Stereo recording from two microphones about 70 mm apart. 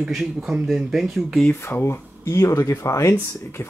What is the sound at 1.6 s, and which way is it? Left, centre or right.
Speech, left.